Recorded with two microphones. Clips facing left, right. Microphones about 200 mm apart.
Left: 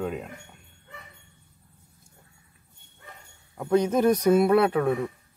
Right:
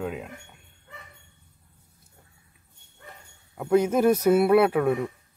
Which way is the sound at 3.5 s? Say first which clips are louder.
Right 1 dB; 5° right (ahead or behind).